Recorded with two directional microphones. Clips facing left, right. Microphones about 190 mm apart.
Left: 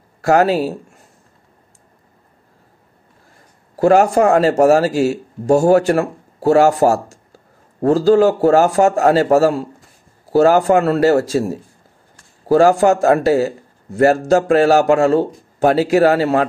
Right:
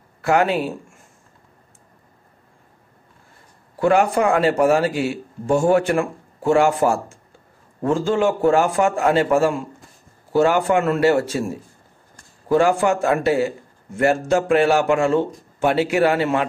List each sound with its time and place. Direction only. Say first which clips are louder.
0.2 s a man's voice: left 5 dB; 40° left (ahead or behind)
3.7 s speech: left 5 dB; 40° left (ahead or behind)